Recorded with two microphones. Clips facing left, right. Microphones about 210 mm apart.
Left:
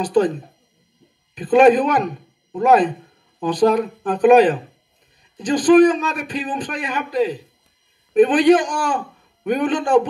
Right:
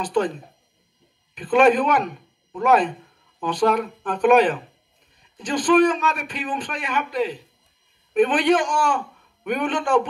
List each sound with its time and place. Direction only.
0.0 s a man's voice: 35° left (ahead or behind)
1.3 s a man's voice: 35° left (ahead or behind)